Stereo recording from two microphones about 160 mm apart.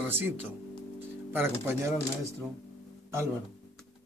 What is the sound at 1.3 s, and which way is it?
Speech, 15° right (ahead or behind).